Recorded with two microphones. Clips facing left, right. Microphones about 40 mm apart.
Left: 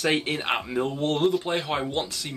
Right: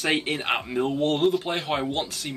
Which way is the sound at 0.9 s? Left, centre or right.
Centre.